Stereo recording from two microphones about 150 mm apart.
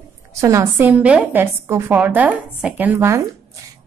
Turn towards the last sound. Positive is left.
turn(degrees=-15)  # may be behind; listen again after turning